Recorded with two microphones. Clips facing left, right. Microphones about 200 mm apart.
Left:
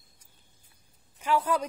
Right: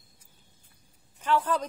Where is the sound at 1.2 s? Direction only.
10° left (ahead or behind).